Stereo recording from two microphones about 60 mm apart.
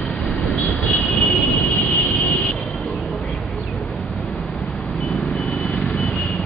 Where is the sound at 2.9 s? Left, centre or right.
Centre.